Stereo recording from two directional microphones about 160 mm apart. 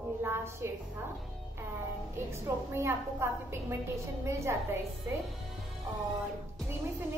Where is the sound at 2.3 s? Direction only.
15° right (ahead or behind).